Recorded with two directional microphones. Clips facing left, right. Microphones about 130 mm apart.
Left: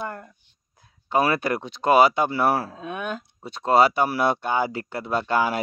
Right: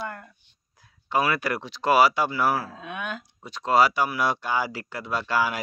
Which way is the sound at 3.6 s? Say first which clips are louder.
Left 2 dB; 30° left (ahead or behind).